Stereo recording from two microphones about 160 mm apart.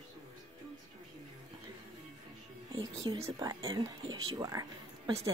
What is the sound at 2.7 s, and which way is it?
Speech, 25° right (ahead or behind).